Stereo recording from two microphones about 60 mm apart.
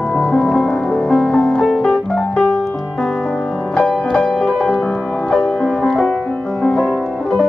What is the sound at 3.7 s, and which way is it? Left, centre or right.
Music, centre.